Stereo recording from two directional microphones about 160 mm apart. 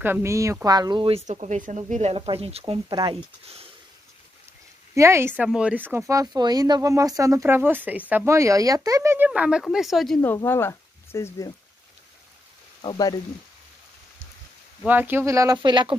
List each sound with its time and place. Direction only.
0.0 s speech: 15° right (ahead or behind); by 3.0 s 35° right (ahead or behind)
4.9 s speech: 15° right (ahead or behind)
5.4 s speech: 5° right (ahead or behind)
10.2 s speech: 15° left (ahead or behind)
12.8 s speech: 30° left (ahead or behind)
14.9 s speech: 10° right (ahead or behind); by 16.0 s 30° right (ahead or behind)